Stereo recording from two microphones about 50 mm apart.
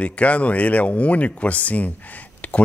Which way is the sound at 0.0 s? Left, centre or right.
Left.